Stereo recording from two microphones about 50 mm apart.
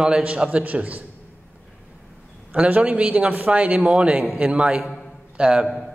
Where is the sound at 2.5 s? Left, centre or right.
Right.